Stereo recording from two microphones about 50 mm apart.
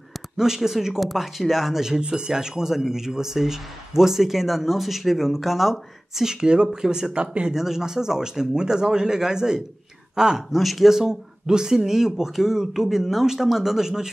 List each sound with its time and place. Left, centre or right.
0.4 s speech: centre
7.5 s speech: centre
10.5 s speech: centre
11.0 s speech: centre